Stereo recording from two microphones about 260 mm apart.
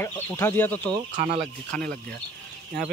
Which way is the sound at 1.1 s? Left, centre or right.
Right.